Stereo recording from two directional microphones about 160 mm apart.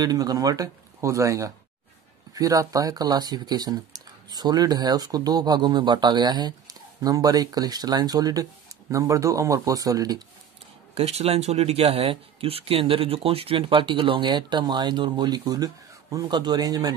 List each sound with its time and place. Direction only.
0.0 s speech: 25° right (ahead or behind)
11.0 s speech: 40° right (ahead or behind); by 16.9 s 25° right (ahead or behind)